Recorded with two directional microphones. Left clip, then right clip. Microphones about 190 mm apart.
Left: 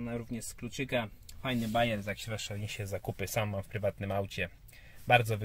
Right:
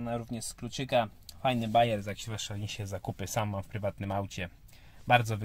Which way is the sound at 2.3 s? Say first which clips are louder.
Even; 15° right (ahead or behind).